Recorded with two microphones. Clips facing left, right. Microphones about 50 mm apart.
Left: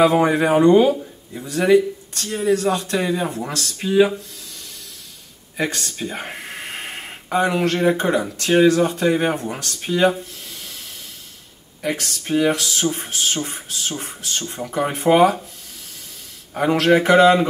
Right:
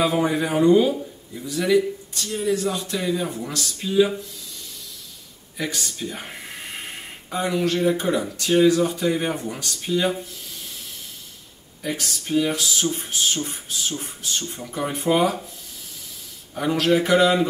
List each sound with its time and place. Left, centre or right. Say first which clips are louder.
0.0 s speech: left 6 dB; left
2.5 s speech: left 8 dB; left
5.6 s speech: left 4 dB; left
6.0 s a sound: left 4 dB; left
8.4 s speech: left 2 dB; left
11.8 s speech: left 4 dB; left
16.5 s speech: left 4 dB; left